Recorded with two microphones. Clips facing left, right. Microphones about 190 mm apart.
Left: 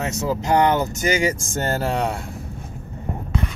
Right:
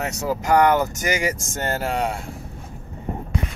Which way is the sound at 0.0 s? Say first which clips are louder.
Left 1 dB; 25° left (ahead or behind).